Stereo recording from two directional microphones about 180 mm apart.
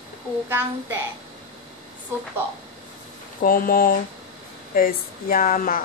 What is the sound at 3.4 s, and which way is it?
Speech, 50° left (ahead or behind).